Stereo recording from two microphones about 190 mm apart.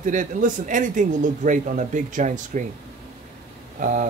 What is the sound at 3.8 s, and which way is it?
Speech, 45° right (ahead or behind).